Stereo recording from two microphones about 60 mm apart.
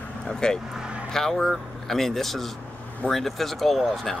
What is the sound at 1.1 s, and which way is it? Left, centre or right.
Speech, centre.